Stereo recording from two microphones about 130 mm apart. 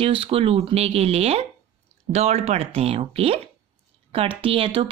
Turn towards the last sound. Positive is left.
turn(degrees=-45)  # may be behind; listen again after turning